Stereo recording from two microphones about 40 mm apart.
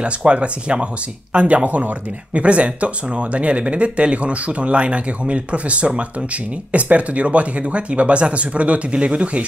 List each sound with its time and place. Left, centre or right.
0.0 s speech: right